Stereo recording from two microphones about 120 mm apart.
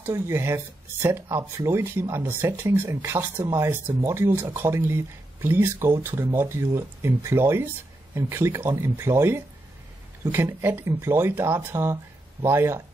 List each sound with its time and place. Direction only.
0.0 s speech: 20° right (ahead or behind)